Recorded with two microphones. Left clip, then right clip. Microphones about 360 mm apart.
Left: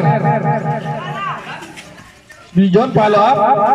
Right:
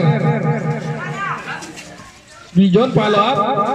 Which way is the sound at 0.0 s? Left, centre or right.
Left.